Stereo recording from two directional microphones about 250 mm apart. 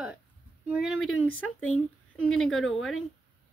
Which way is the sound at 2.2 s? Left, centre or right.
Centre.